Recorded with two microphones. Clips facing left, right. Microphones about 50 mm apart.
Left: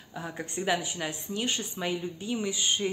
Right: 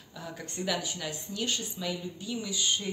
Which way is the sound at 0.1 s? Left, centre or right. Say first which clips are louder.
Left 5 dB; left.